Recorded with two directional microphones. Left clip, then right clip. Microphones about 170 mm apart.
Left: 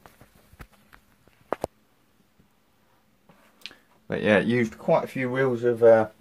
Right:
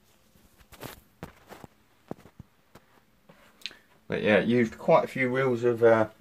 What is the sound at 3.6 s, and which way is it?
Speech, 20° left (ahead or behind).